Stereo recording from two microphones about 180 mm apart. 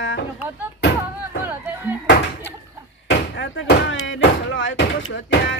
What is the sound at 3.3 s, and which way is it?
Speech, 80° left.